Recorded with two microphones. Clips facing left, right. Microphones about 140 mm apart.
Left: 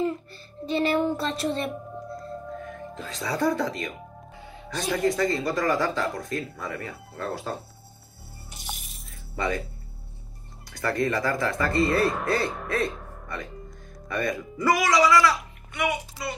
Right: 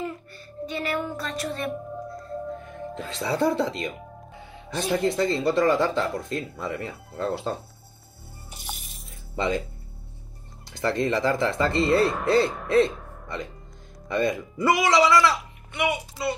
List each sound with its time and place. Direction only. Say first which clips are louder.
0.0 s a child's voice: left 6 dB; 30° left (ahead or behind)
2.9 s speech: right 4 dB; 30° right (ahead or behind)
8.6 s coin: even; centre (ahead or behind)
10.7 s speech: right 1 dB; 25° right (ahead or behind)
12.0 s speech: right 2 dB; centre (ahead or behind)
12.6 s throat clearing: right 7 dB; 25° right (ahead or behind)
12.9 s a sound: even; centre (ahead or behind)
14.0 s speech: right 4 dB; 25° right (ahead or behind)